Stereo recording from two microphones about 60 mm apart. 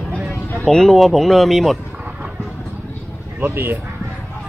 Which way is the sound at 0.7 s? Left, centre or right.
Centre.